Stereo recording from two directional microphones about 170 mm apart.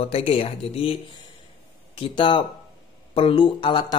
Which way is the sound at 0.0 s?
35° left (ahead or behind).